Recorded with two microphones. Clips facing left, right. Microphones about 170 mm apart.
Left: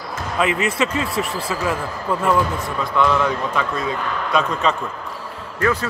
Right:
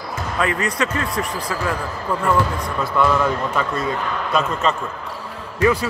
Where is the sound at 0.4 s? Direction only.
20° left (ahead or behind).